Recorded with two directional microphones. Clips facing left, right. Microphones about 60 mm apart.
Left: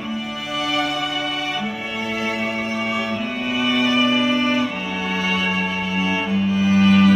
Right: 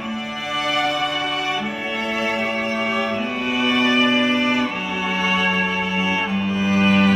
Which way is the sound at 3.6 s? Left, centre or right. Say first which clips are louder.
Right 1 dB; right.